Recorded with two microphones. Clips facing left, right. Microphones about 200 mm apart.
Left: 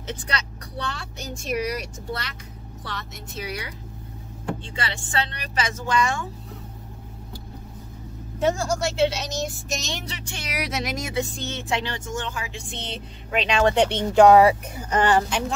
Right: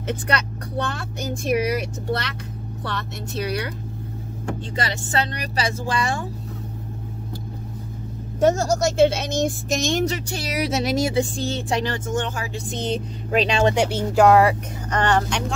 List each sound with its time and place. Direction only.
0.1 s a woman's voice: 55° right (ahead or behind)
2.0 s speech: 70° right (ahead or behind)
4.5 s speech: 40° right (ahead or behind)
8.4 s speech: 45° right (ahead or behind)
13.8 s speech: 5° right (ahead or behind)